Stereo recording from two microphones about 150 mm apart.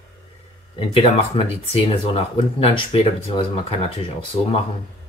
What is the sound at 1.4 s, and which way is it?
Speech, 40° left (ahead or behind).